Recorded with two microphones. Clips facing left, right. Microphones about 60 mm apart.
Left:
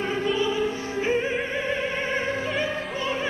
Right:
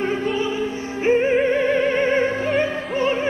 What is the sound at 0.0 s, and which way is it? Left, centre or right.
Music, right.